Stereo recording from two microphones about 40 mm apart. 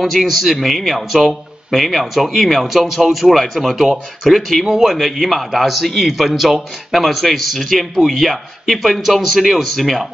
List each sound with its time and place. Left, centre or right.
0.0 s a man's voice: centre